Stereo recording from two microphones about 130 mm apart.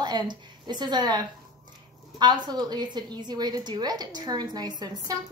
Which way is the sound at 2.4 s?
35° right (ahead or behind).